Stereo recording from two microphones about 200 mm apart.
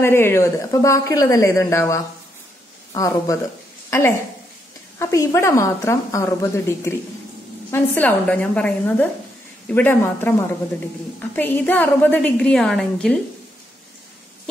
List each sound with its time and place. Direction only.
0.0 s a woman's voice: 10° left (ahead or behind)
4.9 s a woman's voice: 15° left (ahead or behind)
11.3 s a woman's voice: 10° left (ahead or behind)